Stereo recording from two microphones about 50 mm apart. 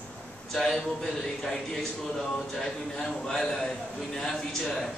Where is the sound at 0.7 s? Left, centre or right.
Centre.